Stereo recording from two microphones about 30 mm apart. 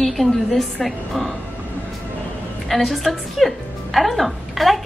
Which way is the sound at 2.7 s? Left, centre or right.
Centre.